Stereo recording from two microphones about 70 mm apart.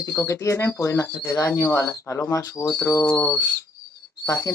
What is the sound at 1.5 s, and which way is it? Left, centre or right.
Speech, left.